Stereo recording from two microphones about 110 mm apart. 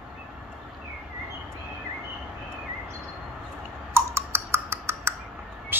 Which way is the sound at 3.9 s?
25° right (ahead or behind).